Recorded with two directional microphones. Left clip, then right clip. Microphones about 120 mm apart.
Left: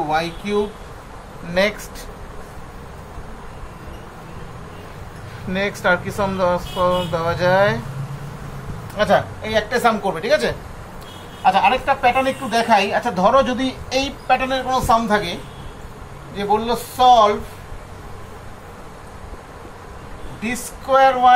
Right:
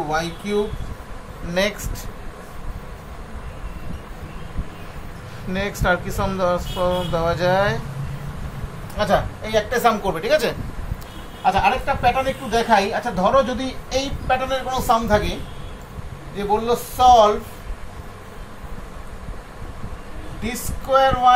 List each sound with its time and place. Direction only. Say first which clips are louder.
0.1 s speech: left 2 dB; 30° right (ahead or behind)
5.5 s speech: left 3 dB; 30° right (ahead or behind)
8.9 s speech: left 3 dB; 20° right (ahead or behind)
9.7 s speech: left 1 dB; 50° right (ahead or behind)
11.4 s a woman's voice: left 3 dB; 25° right (ahead or behind)
16.3 s speech: left 1 dB; 40° right (ahead or behind)
20.4 s speech: left 2 dB; 30° right (ahead or behind)